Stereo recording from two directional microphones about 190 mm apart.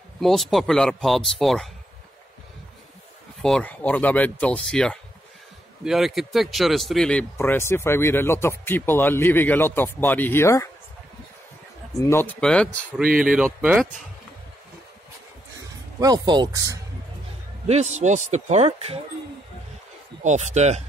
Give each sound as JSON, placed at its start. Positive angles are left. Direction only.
{"t": 0.2, "sound": "speech", "side_deg": 0}
{"t": 3.4, "sound": "speech", "side_deg": 5}
{"t": 12.1, "sound": "speech", "side_deg": 10}
{"t": 13.0, "sound": "speech", "side_deg": -45}
{"t": 13.4, "sound": "speech", "side_deg": -5}
{"t": 16.0, "sound": "speech", "side_deg": -20}
{"t": 17.6, "sound": "speech", "side_deg": -35}
{"t": 20.2, "sound": "speech", "side_deg": -35}